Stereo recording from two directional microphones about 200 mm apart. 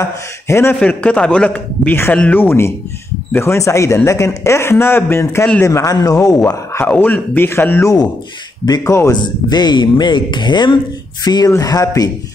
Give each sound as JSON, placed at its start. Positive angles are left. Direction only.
{"t": 0.0, "sound": "speech", "side_deg": 15}